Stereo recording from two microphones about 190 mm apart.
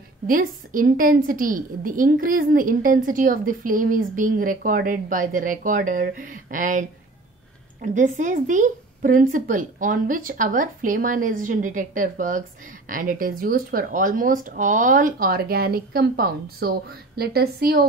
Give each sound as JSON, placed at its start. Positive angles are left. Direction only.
{"t": 0.3, "sound": "a woman's voice", "side_deg": -45}